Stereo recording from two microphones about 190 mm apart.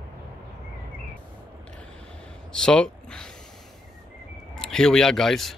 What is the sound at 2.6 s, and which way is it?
Speech, 5° left (ahead or behind).